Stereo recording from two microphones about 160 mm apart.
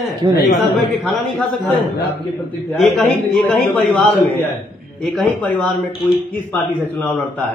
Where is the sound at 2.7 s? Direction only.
5° left (ahead or behind).